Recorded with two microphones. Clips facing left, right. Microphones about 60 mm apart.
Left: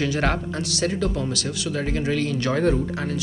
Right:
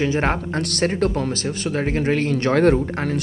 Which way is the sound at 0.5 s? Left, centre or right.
Right.